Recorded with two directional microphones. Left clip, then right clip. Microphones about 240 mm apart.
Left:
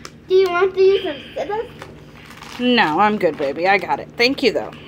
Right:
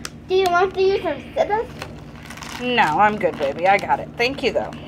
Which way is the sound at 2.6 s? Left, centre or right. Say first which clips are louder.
Left 1 dB; left.